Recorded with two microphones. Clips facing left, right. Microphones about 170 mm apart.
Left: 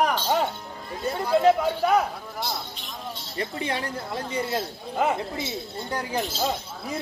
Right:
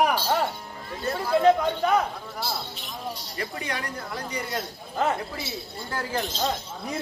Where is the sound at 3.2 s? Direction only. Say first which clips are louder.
Left 3 dB; 25° left (ahead or behind).